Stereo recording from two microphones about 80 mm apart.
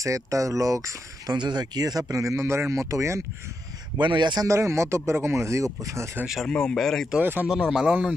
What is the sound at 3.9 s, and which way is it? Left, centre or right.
Speech, right.